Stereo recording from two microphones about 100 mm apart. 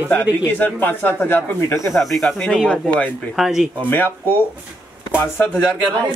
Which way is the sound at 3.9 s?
20° left (ahead or behind).